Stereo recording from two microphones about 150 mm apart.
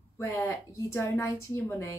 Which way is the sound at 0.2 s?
20° left (ahead or behind).